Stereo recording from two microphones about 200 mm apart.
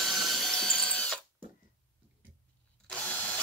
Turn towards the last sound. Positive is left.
turn(degrees=5)  # may be behind; listen again after turning